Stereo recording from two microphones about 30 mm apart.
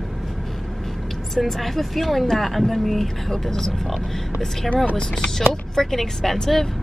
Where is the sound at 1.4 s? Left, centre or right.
Centre.